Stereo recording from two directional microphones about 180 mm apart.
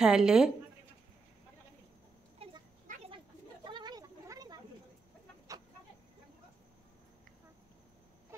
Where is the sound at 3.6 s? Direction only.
25° right (ahead or behind).